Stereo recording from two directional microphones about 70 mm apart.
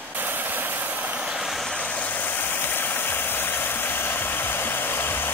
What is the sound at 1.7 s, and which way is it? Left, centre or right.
Vehicle, centre.